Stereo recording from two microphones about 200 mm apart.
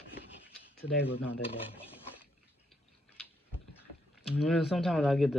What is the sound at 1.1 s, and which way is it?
Speech, 30° left (ahead or behind).